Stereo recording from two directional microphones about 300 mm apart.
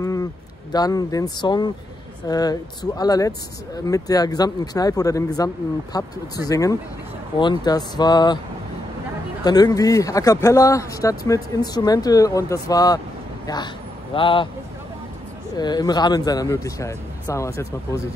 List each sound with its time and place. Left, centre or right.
0.0 s a sound: centre
0.7 s speech: centre
9.4 s speech: centre
14.1 s speech: centre
15.5 s speech: centre